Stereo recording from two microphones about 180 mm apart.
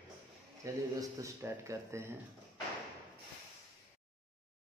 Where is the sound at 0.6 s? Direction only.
20° right (ahead or behind).